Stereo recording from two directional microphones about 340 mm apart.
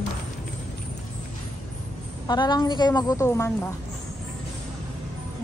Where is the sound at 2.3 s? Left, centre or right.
Centre.